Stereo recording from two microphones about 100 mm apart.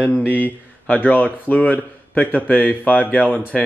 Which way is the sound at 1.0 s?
15° left (ahead or behind).